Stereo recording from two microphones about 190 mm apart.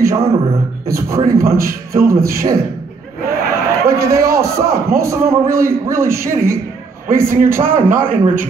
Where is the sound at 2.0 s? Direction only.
50° right (ahead or behind).